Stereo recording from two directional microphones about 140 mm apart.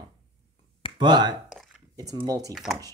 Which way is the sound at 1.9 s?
25° right (ahead or behind).